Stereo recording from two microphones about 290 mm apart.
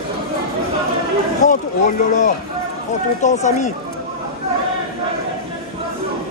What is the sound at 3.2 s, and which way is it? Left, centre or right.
Speech, left.